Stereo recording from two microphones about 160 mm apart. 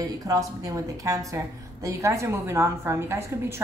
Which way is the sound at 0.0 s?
20° right (ahead or behind).